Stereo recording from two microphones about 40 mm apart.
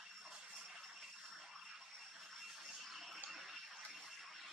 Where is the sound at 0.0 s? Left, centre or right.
Centre.